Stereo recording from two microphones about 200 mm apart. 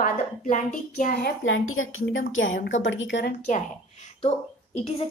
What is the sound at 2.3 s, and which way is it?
A woman's voice, 75° left (ahead or behind).